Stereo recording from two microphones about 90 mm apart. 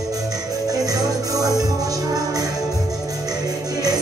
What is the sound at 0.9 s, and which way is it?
Music, 40° right (ahead or behind).